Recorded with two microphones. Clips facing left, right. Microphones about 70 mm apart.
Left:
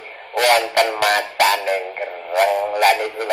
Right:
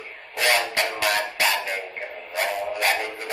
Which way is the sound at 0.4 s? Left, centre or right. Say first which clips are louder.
Left 7 dB; left.